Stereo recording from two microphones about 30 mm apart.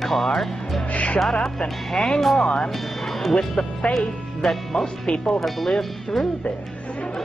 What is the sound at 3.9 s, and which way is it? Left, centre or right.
Speech, left.